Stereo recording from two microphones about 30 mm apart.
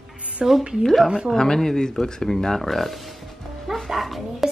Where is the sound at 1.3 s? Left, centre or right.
Left.